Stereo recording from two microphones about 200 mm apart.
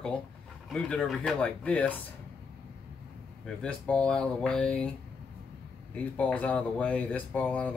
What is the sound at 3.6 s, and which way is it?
Speech, 5° left (ahead or behind).